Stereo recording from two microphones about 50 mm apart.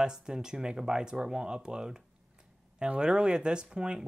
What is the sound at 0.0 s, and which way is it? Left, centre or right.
Speech, centre.